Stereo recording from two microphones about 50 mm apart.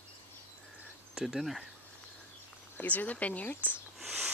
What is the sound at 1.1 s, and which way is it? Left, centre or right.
Speech, centre.